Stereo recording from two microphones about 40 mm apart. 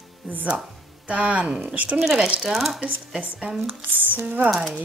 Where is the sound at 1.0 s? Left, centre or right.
Right.